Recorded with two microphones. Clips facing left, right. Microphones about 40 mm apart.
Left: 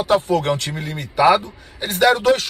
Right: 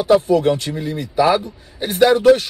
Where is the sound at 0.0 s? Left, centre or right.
Left.